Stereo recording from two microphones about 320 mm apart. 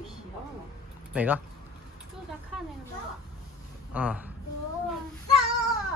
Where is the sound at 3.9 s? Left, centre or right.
Centre.